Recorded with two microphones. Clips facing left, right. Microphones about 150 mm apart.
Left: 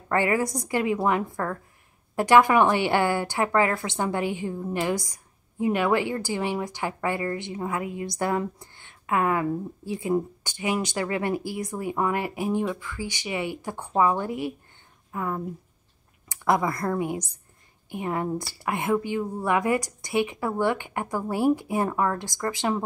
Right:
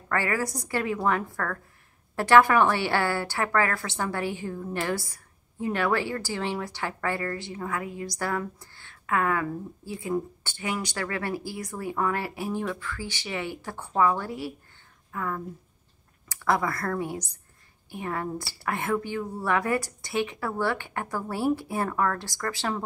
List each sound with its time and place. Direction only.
0.1 s a woman's voice: 20° left (ahead or behind)